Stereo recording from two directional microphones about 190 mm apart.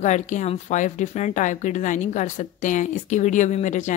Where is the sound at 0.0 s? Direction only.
40° left (ahead or behind).